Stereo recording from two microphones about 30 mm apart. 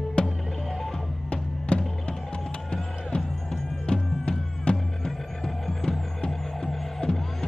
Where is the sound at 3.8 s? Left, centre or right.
Left.